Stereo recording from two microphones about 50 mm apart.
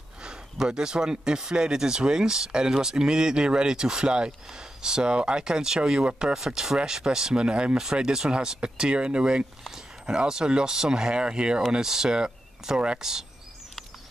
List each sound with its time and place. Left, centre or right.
0.2 s speech: centre